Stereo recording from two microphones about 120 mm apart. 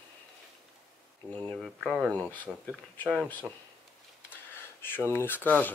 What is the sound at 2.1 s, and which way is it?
Speech, 15° left (ahead or behind).